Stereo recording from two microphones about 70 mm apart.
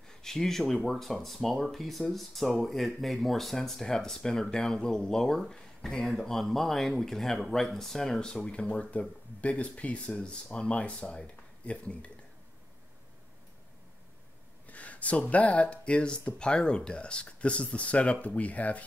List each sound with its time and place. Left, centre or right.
0.1 s speech: centre
14.7 s speech: left